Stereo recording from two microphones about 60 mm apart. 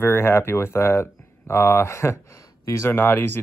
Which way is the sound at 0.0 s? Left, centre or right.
Left.